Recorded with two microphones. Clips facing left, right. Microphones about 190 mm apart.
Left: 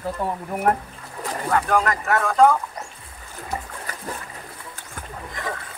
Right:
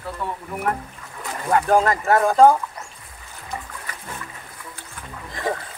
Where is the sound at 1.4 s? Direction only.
30° right (ahead or behind).